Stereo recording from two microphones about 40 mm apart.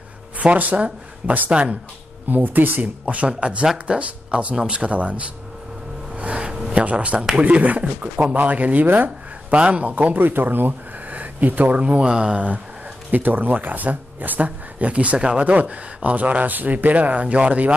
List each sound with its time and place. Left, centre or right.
0.4 s speech: right
2.2 s speech: right
3.1 s speech: right
6.1 s a sound: right
6.7 s speech: right
7.2 s speech: right
7.4 s speech: right
8.8 s speech: right
9.5 s speech: right
10.1 s speech: right
12.0 s speech: right
13.1 s speech: right